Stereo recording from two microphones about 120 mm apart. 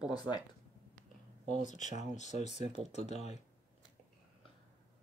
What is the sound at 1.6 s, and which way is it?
Speech, 90° left.